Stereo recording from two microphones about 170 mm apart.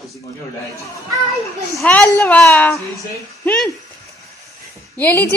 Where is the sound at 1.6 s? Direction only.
15° left (ahead or behind).